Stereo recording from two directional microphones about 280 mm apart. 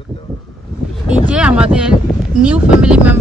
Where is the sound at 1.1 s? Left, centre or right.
Centre.